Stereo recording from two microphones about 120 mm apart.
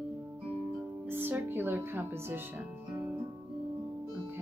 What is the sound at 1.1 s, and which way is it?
Music, 20° right (ahead or behind).